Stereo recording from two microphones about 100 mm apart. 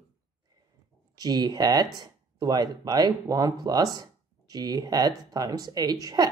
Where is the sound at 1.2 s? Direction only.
45° right (ahead or behind).